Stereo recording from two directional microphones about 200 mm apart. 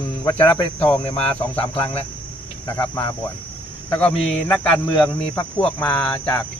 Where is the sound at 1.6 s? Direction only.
25° left (ahead or behind).